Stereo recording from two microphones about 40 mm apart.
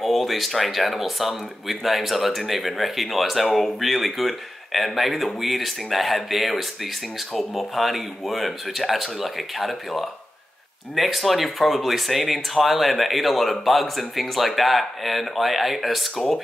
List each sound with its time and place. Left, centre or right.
0.0 s speech: centre